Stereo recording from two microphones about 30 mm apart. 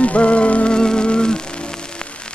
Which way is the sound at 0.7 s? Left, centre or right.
Left.